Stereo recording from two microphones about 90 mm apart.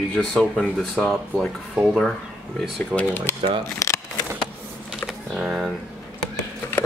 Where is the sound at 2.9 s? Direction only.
20° left (ahead or behind).